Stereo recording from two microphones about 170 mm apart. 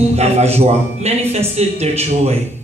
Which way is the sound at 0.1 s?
40° right (ahead or behind).